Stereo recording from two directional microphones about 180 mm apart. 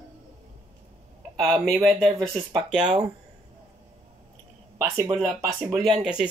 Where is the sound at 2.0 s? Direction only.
25° right (ahead or behind).